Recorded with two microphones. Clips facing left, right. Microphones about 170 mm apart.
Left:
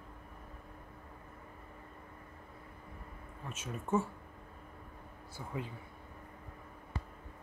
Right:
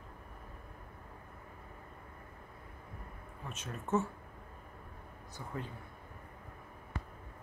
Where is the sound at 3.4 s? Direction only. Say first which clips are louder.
Left 1 dB; 10° left (ahead or behind).